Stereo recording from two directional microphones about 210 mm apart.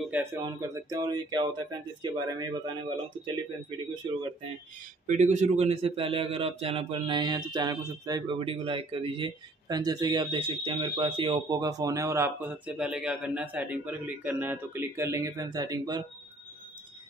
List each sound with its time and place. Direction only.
0.0 s a man's voice: 10° right (ahead or behind)
4.0 s a man's voice: 25° right (ahead or behind)
5.0 s a man's voice: 35° right (ahead or behind); by 16.0 s 15° right (ahead or behind)